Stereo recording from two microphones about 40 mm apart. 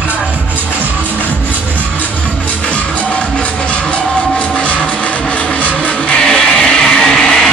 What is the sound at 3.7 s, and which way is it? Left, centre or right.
Music, left.